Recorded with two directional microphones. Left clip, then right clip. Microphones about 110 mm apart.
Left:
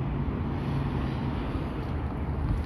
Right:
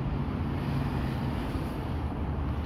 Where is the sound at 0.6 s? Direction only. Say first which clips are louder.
Left 1 dB; 25° right (ahead or behind).